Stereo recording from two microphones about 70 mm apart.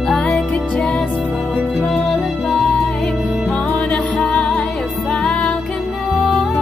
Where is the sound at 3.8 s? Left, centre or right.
Centre.